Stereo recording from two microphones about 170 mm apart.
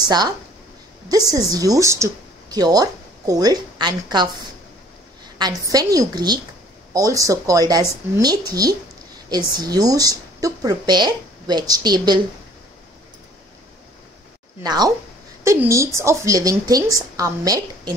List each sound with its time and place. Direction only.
0.0 s a woman's voice: 25° right (ahead or behind)
1.3 s speech: 20° right (ahead or behind)
5.4 s a woman's voice: 20° right (ahead or behind)
14.6 s a woman's voice: 25° right (ahead or behind)